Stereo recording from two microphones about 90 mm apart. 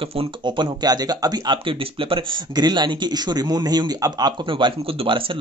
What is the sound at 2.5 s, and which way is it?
A man's voice, 55° right (ahead or behind).